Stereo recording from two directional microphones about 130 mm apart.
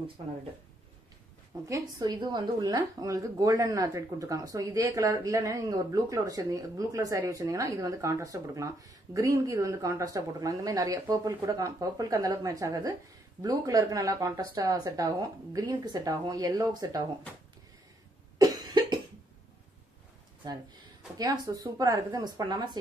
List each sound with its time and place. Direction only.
1.7 s a woman's voice: 30° right (ahead or behind)
18.4 s cough: 35° right (ahead or behind)
21.2 s a woman's voice: 30° right (ahead or behind)